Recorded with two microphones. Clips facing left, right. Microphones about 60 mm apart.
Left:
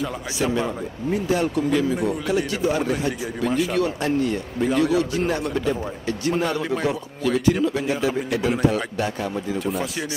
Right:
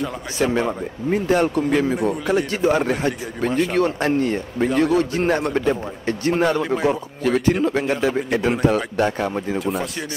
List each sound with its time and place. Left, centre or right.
0.4 s a man's voice: right
6.5 s speech: centre
6.9 s a man's voice: right